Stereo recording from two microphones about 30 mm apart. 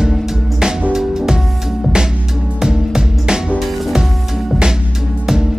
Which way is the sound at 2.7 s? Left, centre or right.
Right.